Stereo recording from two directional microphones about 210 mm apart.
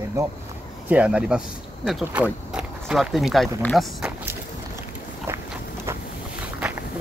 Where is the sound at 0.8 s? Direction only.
5° right (ahead or behind).